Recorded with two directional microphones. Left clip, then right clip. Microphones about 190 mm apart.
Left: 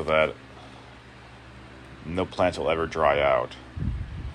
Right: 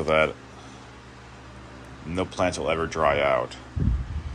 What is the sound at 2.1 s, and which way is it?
Speech, 15° right (ahead or behind).